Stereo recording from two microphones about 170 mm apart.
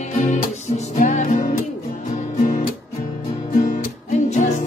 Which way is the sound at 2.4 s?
50° left (ahead or behind).